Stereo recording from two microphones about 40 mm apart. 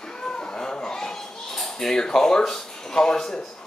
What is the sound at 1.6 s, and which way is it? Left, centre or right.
A woman's voice, centre.